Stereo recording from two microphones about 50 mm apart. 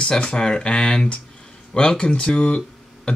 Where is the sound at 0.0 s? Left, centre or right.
Centre.